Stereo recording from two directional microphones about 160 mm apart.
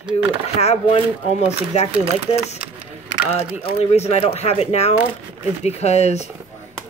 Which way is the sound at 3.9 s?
40° left (ahead or behind).